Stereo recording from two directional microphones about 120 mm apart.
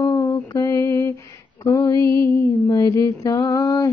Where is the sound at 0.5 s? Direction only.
25° left (ahead or behind).